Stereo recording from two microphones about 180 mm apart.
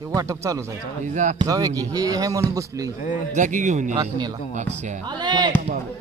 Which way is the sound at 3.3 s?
45° right (ahead or behind).